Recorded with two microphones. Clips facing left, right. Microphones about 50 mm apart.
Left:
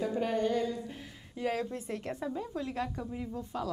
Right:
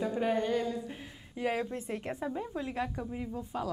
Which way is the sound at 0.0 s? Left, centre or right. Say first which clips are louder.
Even; centre.